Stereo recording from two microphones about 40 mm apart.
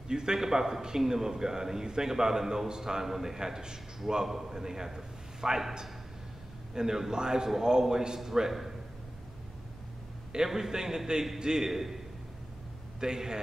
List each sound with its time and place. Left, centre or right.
0.1 s a man's voice: centre
10.3 s a man's voice: centre
13.0 s a man's voice: centre